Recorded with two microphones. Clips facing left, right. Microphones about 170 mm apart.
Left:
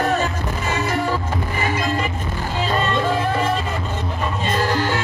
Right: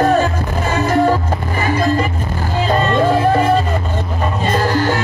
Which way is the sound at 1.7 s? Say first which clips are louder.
Right 9 dB; 40° right (ahead or behind).